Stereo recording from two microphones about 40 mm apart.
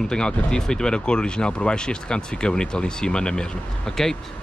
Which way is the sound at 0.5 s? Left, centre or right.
Centre.